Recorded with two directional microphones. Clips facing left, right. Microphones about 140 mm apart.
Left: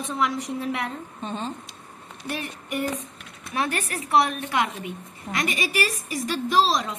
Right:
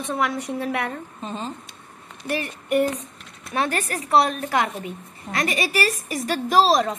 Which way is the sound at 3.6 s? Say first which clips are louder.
Right 2 dB; 35° right (ahead or behind).